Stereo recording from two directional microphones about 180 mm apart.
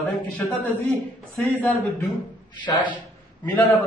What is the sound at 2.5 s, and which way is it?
Speech, 25° left (ahead or behind).